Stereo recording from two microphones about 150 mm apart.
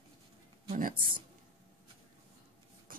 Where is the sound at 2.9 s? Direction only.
70° right (ahead or behind).